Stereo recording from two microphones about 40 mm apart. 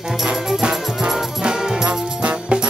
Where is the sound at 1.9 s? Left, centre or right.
Right.